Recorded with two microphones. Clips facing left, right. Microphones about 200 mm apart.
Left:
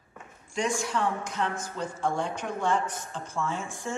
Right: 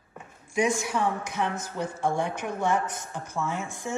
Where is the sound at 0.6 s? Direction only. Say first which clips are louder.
Right 2 dB; 10° right (ahead or behind).